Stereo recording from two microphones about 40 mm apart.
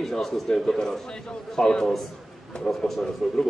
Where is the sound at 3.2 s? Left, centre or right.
Centre.